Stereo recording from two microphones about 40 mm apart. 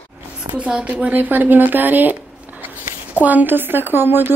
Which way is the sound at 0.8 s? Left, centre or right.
Right.